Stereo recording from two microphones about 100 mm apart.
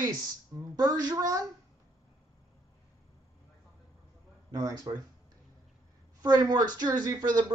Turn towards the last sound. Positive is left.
turn(degrees=-45)  # may be behind; listen again after turning